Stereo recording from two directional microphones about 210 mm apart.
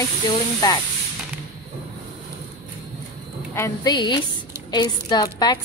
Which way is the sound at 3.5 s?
15° left (ahead or behind).